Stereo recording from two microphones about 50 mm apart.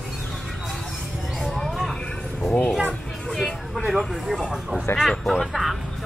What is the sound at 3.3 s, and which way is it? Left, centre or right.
Vehicle, centre.